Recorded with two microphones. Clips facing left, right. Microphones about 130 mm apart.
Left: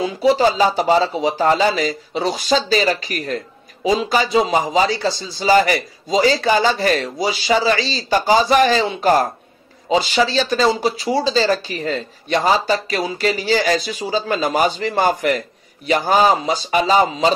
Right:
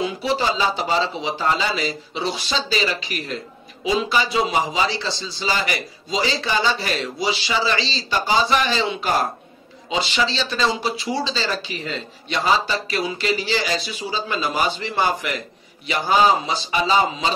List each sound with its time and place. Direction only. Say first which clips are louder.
0.0 s speech: left 7 dB; 40° left (ahead or behind)